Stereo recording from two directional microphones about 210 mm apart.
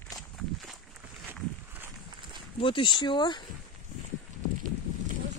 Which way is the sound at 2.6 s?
25° left (ahead or behind).